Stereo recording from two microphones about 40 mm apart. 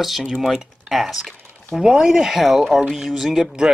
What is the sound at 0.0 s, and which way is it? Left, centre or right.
Speech, centre.